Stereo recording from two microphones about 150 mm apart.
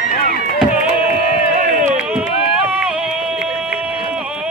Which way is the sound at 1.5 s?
55° right (ahead or behind).